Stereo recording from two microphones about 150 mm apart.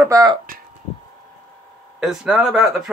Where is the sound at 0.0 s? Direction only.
25° right (ahead or behind).